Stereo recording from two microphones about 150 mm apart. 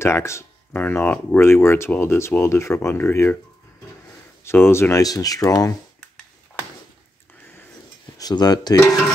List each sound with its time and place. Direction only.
0.0 s speech: 20° left (ahead or behind)
4.5 s speech: 15° left (ahead or behind)
8.2 s speech: 25° left (ahead or behind)